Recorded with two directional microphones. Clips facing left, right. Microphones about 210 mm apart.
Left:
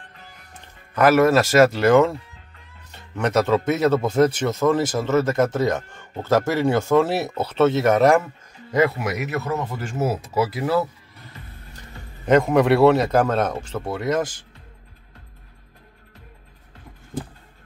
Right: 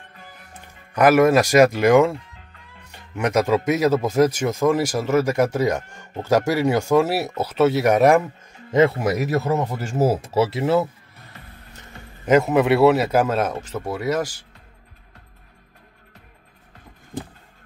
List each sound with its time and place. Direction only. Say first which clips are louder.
0.9 s speech: right 1 dB; 15° right (ahead or behind)
8.7 s speech: right 3 dB; 30° right (ahead or behind)
10.3 s speech: right 2 dB; 25° right (ahead or behind)
12.3 s speech: even; 5° right (ahead or behind)